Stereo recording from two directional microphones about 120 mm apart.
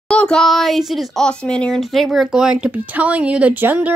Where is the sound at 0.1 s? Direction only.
5° left (ahead or behind).